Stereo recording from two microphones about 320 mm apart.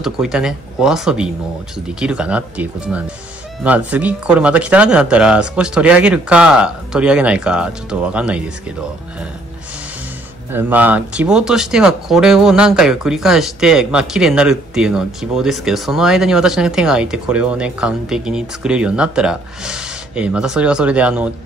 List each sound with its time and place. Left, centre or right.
0.0 s speech: centre
10.5 s speech: centre